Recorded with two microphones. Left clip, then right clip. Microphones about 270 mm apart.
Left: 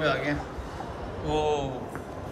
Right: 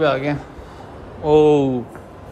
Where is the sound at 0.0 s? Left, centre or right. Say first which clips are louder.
Right 8 dB; centre.